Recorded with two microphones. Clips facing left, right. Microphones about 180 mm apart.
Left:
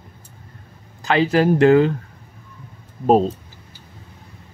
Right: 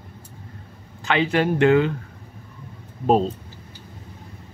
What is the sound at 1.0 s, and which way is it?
Speech, 40° left (ahead or behind).